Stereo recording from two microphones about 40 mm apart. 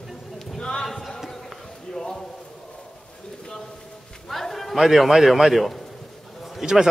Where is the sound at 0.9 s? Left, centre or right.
Centre.